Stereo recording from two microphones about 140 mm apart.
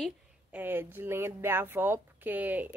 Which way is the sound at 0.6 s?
15° right (ahead or behind).